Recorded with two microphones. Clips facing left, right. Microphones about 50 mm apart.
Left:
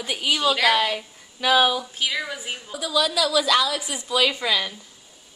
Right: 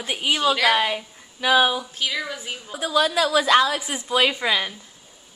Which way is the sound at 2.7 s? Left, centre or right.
Right.